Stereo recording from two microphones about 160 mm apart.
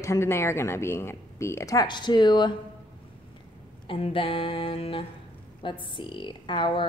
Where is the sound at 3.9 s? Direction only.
35° left (ahead or behind).